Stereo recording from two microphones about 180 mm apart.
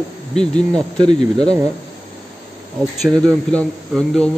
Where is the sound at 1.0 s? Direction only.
25° right (ahead or behind).